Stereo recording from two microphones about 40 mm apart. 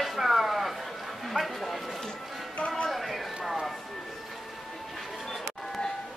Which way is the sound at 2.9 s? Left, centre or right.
Centre.